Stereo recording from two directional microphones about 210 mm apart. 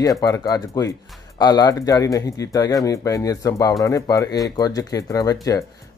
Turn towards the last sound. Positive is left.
turn(degrees=15)  # may be behind; listen again after turning